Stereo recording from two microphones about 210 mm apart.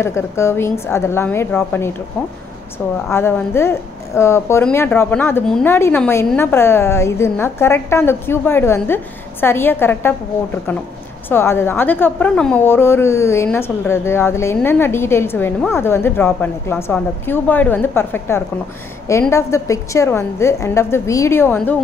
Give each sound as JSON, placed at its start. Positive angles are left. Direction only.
{"t": 0.0, "sound": "speech", "side_deg": 10}
{"t": 3.1, "sound": "speech", "side_deg": 10}